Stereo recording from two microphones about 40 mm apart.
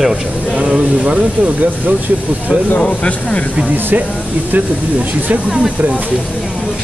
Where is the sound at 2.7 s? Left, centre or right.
Left.